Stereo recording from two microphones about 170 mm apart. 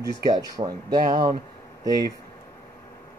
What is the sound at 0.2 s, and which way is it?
A man's voice, 20° right (ahead or behind).